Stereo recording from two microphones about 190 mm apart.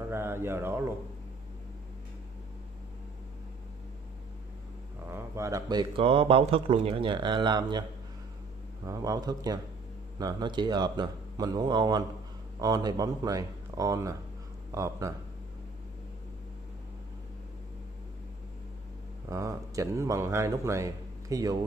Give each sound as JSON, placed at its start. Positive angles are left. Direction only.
{"t": 0.1, "sound": "speech", "side_deg": -10}
{"t": 5.0, "sound": "speech", "side_deg": -15}
{"t": 8.8, "sound": "speech", "side_deg": -20}
{"t": 19.2, "sound": "speech", "side_deg": -15}